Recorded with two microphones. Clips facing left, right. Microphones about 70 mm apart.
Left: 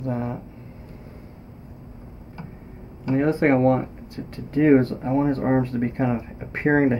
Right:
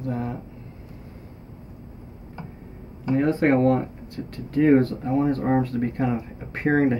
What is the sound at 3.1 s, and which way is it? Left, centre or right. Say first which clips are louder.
Speech: left 1 dB; centre.